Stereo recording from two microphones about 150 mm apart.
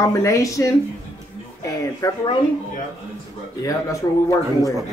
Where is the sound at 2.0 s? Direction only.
25° left (ahead or behind).